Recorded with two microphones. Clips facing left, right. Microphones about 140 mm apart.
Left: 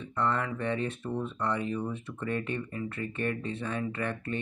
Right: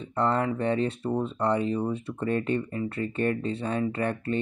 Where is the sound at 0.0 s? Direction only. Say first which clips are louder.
Right 5 dB; 35° right (ahead or behind).